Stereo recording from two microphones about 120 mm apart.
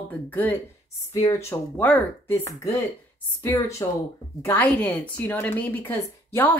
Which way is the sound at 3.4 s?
25° left (ahead or behind).